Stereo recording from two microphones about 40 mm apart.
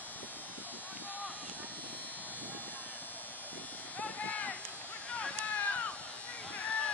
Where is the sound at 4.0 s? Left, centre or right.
Left.